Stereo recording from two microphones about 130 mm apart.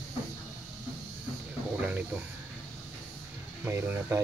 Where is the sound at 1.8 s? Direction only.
10° right (ahead or behind).